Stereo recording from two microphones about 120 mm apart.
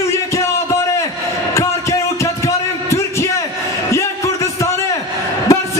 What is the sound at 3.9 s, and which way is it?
Music, 25° left (ahead or behind).